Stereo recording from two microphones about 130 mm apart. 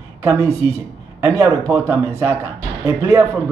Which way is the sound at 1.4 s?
25° right (ahead or behind).